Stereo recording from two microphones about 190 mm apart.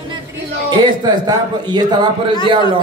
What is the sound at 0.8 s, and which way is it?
Speech, 25° right (ahead or behind).